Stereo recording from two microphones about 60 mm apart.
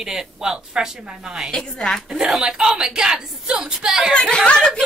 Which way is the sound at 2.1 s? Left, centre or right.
Centre.